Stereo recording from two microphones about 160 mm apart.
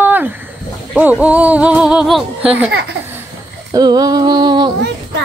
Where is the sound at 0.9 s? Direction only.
10° right (ahead or behind).